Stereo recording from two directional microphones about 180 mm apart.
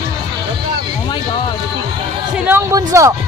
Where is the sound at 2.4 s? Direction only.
15° right (ahead or behind).